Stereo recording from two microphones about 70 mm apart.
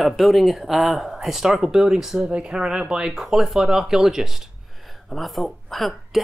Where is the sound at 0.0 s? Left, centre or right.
Centre.